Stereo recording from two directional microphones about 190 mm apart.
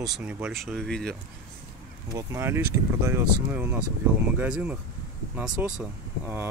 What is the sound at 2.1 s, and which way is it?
Speech, 15° right (ahead or behind).